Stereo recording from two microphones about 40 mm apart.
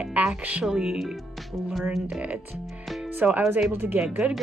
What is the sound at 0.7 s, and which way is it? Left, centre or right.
Speech, centre.